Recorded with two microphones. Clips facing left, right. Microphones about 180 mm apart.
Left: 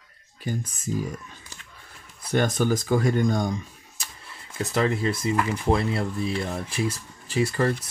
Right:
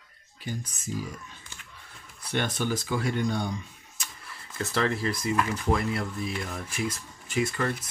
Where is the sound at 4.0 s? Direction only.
35° left (ahead or behind).